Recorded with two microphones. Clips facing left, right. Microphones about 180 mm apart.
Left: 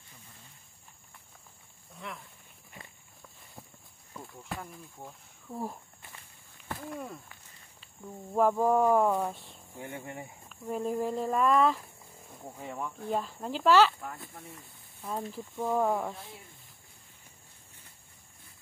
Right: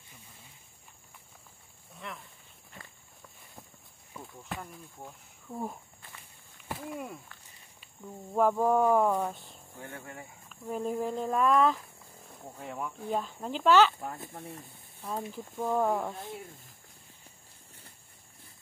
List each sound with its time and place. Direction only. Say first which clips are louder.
2.0 s a sound: left 1 dB; centre (ahead or behind)
4.1 s speech: even; centre (ahead or behind)
9.8 s speech: left 3 dB; 15° left (ahead or behind)
10.5 s speech: left 1 dB; centre (ahead or behind)
14.0 s speech: right 3 dB; 25° right (ahead or behind)
15.5 s speech: even; centre (ahead or behind)